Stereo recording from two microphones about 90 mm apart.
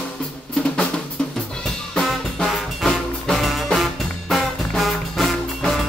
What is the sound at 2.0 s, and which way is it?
Music, 5° left (ahead or behind).